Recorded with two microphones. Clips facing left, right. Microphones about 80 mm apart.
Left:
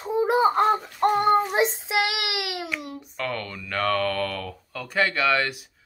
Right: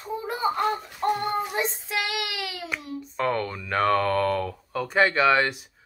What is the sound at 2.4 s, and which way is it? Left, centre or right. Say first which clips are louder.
Speech: left 3 dB; left.